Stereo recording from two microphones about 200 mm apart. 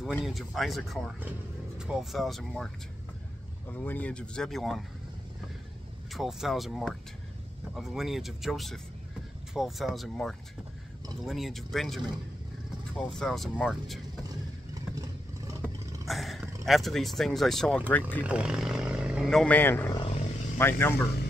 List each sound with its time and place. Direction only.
0.0 s speech: centre (ahead or behind)
6.1 s speech: centre (ahead or behind)
14.7 s vehicle: 15° right (ahead or behind)
16.1 s speech: centre (ahead or behind)
18.2 s speech: 5° right (ahead or behind)
19.9 s wild animals: 25° left (ahead or behind)
20.5 s speech: 10° left (ahead or behind)